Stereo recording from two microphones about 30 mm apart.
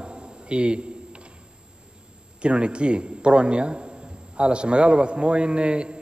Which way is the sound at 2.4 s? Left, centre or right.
Right.